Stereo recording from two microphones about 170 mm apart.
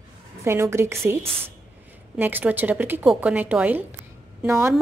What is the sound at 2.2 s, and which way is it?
A woman's voice, 10° right (ahead or behind).